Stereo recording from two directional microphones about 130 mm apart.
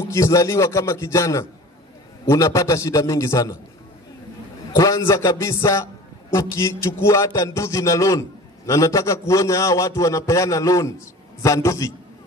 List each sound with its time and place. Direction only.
0.0 s music: 20° left (ahead or behind)
4.7 s music: 25° left (ahead or behind)